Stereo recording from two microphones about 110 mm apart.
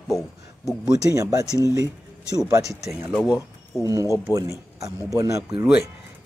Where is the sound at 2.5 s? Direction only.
30° right (ahead or behind).